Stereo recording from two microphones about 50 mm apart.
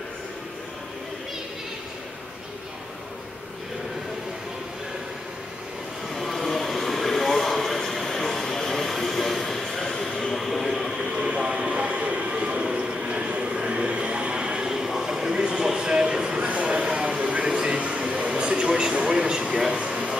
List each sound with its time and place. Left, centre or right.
6.1 s vehicle: centre
10.4 s a sound: centre
11.1 s train: right